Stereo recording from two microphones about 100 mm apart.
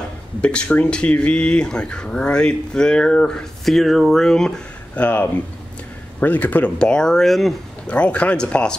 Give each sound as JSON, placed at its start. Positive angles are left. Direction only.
{"t": 0.4, "sound": "speech", "side_deg": 10}
{"t": 7.8, "sound": "speech", "side_deg": 10}